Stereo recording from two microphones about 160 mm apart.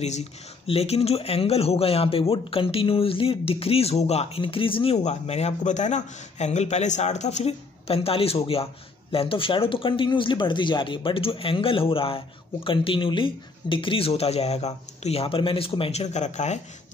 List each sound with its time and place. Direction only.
0.0 s speech: 45° left (ahead or behind)